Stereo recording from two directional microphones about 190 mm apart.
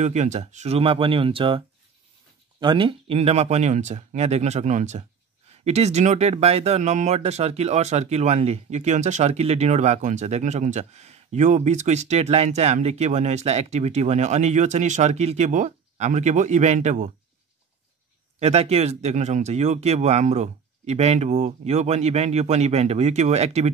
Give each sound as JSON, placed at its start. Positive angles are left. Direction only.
{"t": 0.0, "sound": "speech", "side_deg": -40}
{"t": 2.6, "sound": "speech", "side_deg": -25}
{"t": 18.4, "sound": "speech", "side_deg": -35}